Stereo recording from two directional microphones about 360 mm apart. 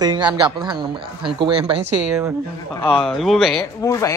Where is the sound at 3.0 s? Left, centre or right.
Centre.